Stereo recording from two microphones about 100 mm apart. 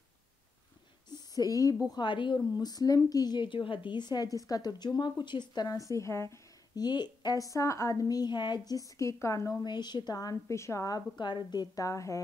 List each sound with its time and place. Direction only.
1.1 s a sound: 40° left (ahead or behind)
1.9 s a woman's voice: 50° left (ahead or behind)
2.5 s a woman's voice: 40° left (ahead or behind)
5.9 s speech: 30° left (ahead or behind)
6.8 s a woman's voice: 45° left (ahead or behind)
8.6 s a woman's voice: 35° left (ahead or behind)
9.6 s a woman's voice: 45° left (ahead or behind)